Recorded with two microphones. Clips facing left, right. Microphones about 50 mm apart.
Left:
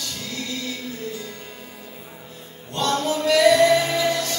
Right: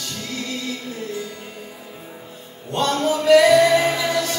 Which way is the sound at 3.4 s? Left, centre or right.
Centre.